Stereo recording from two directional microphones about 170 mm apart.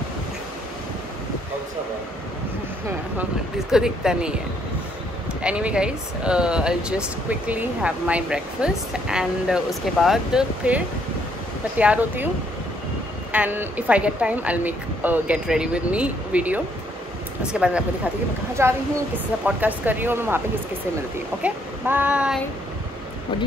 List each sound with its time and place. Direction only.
3.2 s speech: 5° right (ahead or behind)
5.4 s speech: 5° right (ahead or behind)
11.8 s speech: 10° right (ahead or behind)
13.3 s speech: 10° right (ahead or behind)